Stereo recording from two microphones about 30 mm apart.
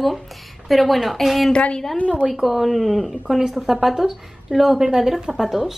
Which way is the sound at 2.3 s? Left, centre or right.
Centre.